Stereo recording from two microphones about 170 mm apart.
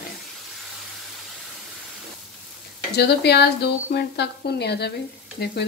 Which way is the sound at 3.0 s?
75° left (ahead or behind).